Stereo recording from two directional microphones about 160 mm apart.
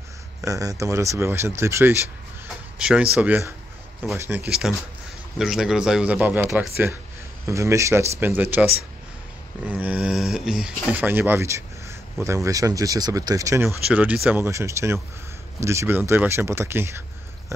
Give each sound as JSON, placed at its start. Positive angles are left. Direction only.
{"t": 0.5, "sound": "speech", "side_deg": -20}
{"t": 2.8, "sound": "speech", "side_deg": -5}
{"t": 9.7, "sound": "speech", "side_deg": -10}
{"t": 13.8, "sound": "speech", "side_deg": -5}
{"t": 17.5, "sound": "a sound", "side_deg": -20}